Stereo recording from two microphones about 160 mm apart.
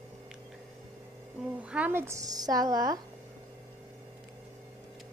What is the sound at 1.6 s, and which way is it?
Speech, 5° right (ahead or behind).